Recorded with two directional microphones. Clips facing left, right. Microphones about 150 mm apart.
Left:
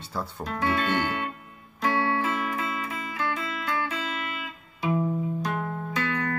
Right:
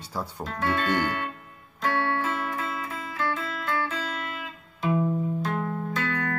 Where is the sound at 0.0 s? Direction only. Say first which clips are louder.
Even; 10° right (ahead or behind).